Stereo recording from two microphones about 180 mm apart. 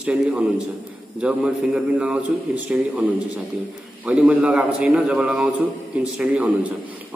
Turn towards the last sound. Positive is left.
turn(degrees=-5)  # may be behind; listen again after turning